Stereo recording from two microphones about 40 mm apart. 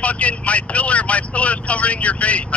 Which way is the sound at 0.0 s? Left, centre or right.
Left.